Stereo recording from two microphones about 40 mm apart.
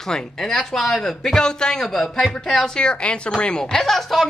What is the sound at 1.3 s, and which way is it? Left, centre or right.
Speech, centre.